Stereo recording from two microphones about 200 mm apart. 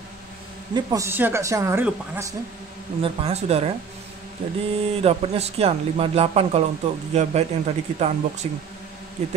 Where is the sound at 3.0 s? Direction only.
30° right (ahead or behind).